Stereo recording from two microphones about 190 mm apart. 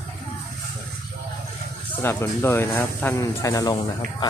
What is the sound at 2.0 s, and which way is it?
Speech, 15° left (ahead or behind).